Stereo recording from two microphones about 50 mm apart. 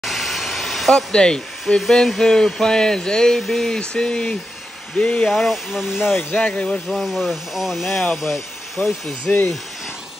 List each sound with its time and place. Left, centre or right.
0.0 s vehicle: centre
0.9 s a sound: centre
1.8 s a sound: centre
4.9 s speech: left
5.3 s speech: centre
6.3 s speech: left
6.9 s speech: centre
8.8 s speech: left